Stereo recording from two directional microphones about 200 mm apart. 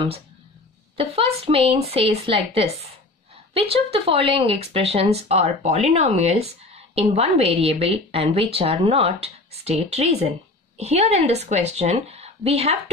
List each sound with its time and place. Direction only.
0.9 s a woman's voice: 30° right (ahead or behind)